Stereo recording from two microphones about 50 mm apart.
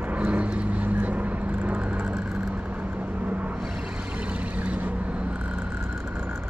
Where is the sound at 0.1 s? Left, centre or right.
Right.